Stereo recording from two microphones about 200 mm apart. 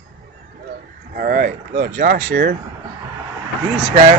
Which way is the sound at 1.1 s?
45° right (ahead or behind).